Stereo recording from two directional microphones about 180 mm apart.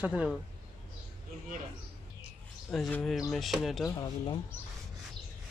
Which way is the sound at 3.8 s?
25° left (ahead or behind).